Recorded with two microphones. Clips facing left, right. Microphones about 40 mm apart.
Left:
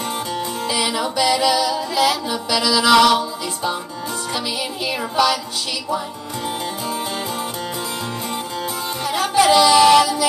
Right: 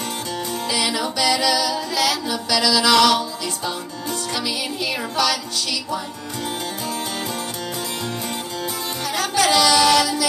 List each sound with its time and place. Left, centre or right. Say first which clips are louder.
0.7 s music: left 1 dB; centre
5.1 s music: left 4 dB; centre
9.0 s music: left 4 dB; centre